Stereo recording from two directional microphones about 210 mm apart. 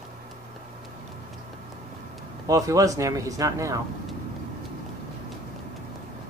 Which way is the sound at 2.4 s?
15° right (ahead or behind).